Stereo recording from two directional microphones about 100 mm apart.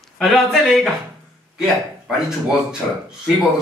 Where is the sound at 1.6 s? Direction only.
5° right (ahead or behind).